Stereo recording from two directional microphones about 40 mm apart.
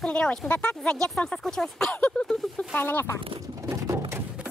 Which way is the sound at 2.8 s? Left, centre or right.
Left.